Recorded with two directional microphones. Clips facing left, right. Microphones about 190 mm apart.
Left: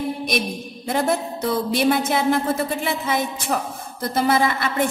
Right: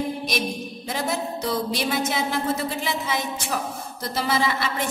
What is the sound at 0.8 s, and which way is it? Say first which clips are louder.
A woman's voice: left 6 dB; 55° left (ahead or behind).